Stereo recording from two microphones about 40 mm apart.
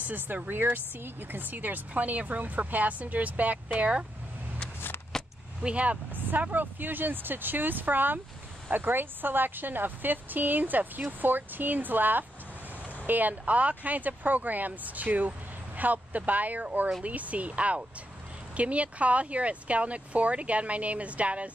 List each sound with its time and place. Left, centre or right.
0.0 s speech: right
5.1 s keys jangling: centre
5.6 s speech: right
6.1 s speech: right